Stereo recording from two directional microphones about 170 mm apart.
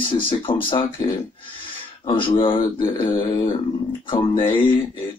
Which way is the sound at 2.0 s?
30° left (ahead or behind).